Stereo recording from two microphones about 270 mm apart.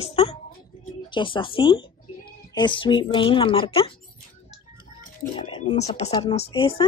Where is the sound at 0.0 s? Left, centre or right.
Left.